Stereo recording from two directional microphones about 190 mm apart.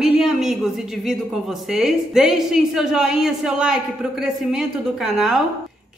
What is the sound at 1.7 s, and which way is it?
A woman's voice, centre (ahead or behind).